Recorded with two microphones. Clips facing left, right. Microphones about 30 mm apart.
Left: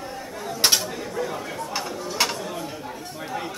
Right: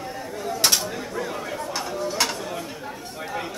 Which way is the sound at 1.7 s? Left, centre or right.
Centre.